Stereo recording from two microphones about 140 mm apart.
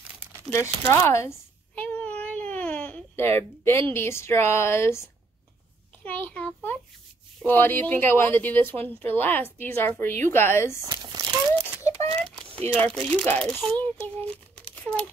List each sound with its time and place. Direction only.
0.5 s speech: 20° left (ahead or behind)
1.8 s baby cry: 10° left (ahead or behind)
3.9 s a child's voice: 20° left (ahead or behind)
10.8 s crumpling: 30° right (ahead or behind)
12.5 s a child's voice: 10° left (ahead or behind)